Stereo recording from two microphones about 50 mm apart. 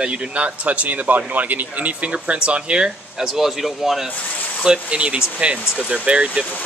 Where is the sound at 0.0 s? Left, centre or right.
Right.